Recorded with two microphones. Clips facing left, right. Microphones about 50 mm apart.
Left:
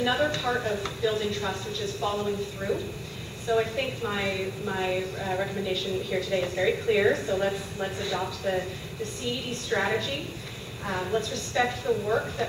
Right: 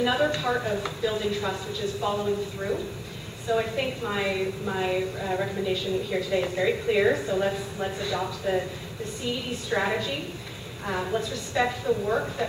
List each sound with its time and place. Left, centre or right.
0.0 s a woman's voice: centre